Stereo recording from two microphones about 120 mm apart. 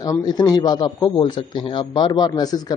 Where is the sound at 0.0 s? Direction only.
35° left (ahead or behind).